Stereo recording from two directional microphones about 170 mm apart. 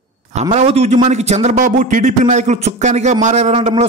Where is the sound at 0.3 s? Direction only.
40° right (ahead or behind).